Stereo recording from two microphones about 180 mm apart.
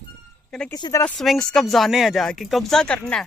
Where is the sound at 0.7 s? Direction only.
20° left (ahead or behind).